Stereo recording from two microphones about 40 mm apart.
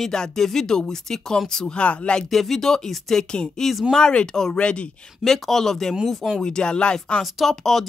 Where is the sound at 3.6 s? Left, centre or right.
Centre.